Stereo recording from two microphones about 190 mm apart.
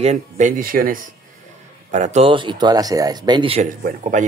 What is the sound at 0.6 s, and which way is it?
Speech, 50° right (ahead or behind).